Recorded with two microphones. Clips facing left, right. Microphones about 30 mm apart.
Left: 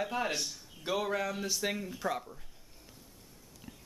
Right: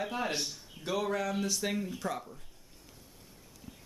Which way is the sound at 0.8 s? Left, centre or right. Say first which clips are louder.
Even; centre.